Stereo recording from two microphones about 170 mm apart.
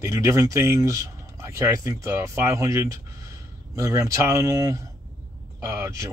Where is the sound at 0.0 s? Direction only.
20° right (ahead or behind).